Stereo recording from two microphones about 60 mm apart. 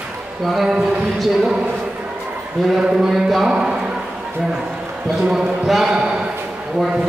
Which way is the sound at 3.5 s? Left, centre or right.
Centre.